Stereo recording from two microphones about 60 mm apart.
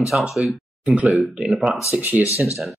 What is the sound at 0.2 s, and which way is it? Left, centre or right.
Speech, centre.